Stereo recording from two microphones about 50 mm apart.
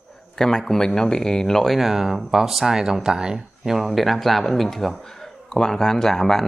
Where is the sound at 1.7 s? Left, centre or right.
Centre.